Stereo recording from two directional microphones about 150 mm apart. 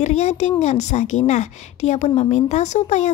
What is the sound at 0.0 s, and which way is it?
A woman's voice, 50° left (ahead or behind).